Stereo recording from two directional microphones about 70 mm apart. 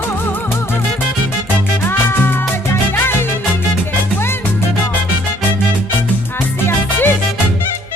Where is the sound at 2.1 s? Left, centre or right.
Left.